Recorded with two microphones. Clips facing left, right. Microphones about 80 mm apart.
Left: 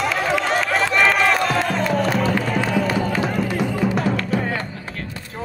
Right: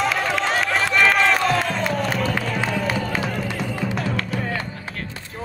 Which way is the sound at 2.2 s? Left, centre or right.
Left.